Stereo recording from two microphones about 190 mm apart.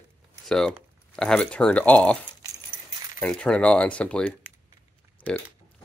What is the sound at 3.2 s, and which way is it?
Speech, 5° left (ahead or behind).